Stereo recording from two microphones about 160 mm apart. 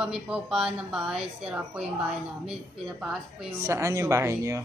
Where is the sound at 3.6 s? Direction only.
15° right (ahead or behind).